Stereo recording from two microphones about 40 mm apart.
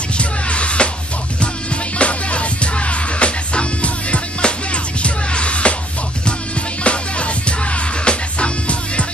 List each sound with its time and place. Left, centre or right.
0.2 s music: left
6.8 s music: left